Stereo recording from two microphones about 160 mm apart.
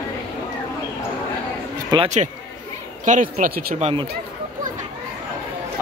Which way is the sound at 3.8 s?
40° right (ahead or behind).